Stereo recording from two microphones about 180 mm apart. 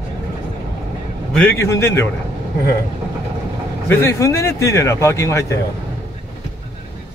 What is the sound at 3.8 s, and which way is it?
Speech, 15° left (ahead or behind).